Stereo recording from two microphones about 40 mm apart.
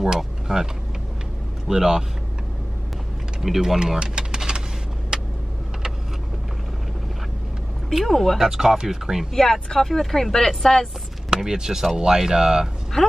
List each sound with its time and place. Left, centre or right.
0.5 s speech: centre
1.7 s speech: centre
3.3 s speech: centre
4.0 s vehicle: centre
8.0 s speech: centre
8.4 s speech: centre
9.3 s speech: centre
11.2 s speech: centre
13.0 s speech: centre